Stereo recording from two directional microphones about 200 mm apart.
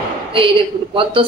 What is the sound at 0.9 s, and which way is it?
Speech, 25° right (ahead or behind).